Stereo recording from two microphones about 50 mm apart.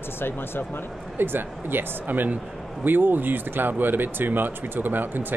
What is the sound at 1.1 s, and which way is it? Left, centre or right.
Speech, right.